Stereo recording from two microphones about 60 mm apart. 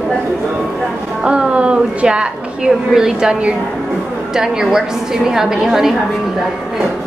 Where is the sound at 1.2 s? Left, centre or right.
Centre.